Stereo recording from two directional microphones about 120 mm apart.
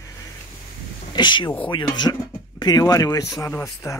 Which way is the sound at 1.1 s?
40° left (ahead or behind).